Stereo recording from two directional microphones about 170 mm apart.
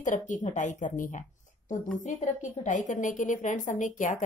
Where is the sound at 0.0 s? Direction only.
45° left (ahead or behind).